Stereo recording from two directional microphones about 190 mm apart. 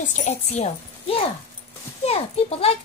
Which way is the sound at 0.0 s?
40° left (ahead or behind).